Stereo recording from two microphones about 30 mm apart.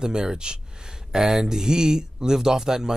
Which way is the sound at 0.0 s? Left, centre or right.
Right.